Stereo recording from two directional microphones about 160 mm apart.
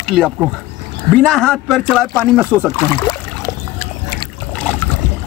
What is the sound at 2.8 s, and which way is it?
Speech, 20° left (ahead or behind).